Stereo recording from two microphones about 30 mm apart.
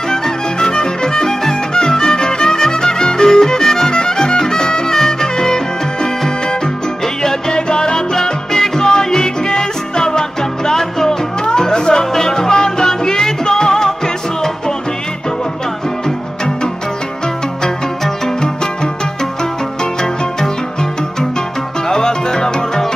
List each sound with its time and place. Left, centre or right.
0.1 s music: left
7.5 s music: left
21.8 s music: left